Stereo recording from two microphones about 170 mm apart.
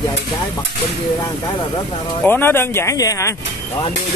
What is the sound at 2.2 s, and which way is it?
Speech, 10° left (ahead or behind).